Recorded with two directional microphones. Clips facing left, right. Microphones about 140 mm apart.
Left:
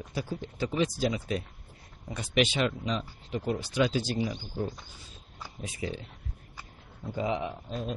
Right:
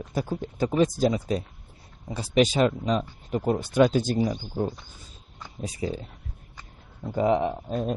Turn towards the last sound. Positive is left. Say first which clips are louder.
# right 7 dB
turn(degrees=-50)  # may be behind; listen again after turning